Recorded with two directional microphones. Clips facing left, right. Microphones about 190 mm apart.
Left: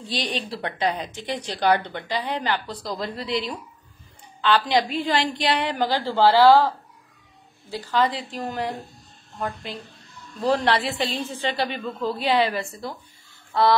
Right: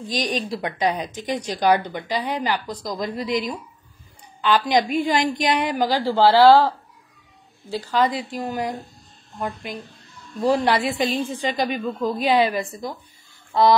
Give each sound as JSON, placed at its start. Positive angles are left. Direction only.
{"t": 0.3, "sound": "speech", "side_deg": -10}
{"t": 7.9, "sound": "speech", "side_deg": -10}
{"t": 13.5, "sound": "a sound", "side_deg": -15}